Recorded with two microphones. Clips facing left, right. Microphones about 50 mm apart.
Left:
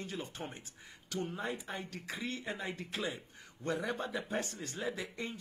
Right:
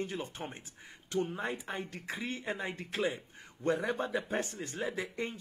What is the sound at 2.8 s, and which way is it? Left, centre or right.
Speech, right.